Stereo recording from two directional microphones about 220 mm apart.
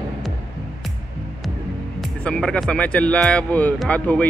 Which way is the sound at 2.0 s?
5° left (ahead or behind).